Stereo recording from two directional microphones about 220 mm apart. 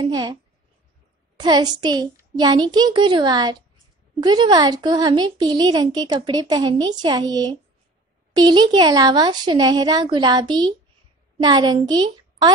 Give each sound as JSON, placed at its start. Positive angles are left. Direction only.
{"t": 0.0, "sound": "a child's voice", "side_deg": -20}